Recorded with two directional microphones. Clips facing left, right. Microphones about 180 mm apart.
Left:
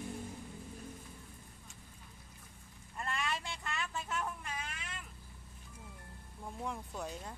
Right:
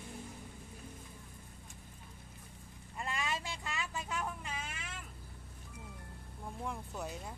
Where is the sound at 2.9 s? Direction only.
15° right (ahead or behind).